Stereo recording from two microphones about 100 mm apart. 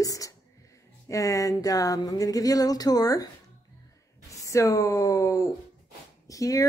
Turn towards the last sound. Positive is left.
turn(degrees=35)  # may be behind; listen again after turning